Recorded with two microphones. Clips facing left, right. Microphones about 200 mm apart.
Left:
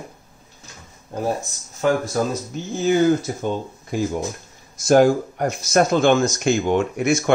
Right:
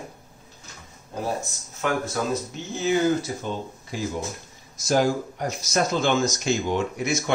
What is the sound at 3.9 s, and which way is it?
Speech, 50° left (ahead or behind).